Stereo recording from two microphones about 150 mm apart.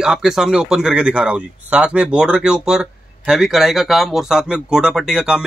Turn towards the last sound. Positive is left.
turn(degrees=-5)  # may be behind; listen again after turning